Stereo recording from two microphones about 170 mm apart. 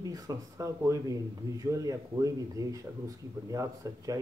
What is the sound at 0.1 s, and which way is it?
Speech, 20° right (ahead or behind).